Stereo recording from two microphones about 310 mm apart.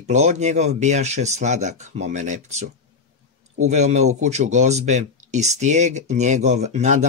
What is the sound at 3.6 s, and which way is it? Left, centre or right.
Speech, right.